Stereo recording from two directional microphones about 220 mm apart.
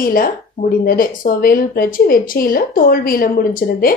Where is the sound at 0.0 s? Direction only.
40° left (ahead or behind).